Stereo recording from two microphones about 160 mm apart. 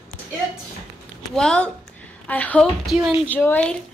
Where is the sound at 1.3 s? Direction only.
5° left (ahead or behind).